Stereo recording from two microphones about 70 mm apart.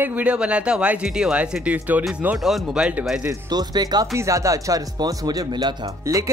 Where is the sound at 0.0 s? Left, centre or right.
Right.